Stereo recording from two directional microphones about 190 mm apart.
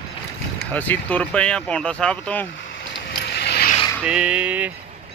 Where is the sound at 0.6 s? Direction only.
10° left (ahead or behind).